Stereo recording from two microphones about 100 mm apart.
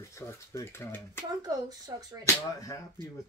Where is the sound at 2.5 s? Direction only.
35° left (ahead or behind).